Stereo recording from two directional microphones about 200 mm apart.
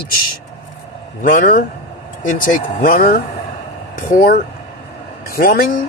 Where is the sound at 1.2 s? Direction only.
45° left (ahead or behind).